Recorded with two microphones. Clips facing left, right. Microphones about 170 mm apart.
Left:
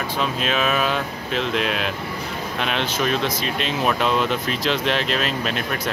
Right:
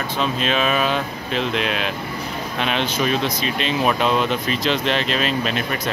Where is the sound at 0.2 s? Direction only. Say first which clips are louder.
Right 2 dB; 5° left (ahead or behind).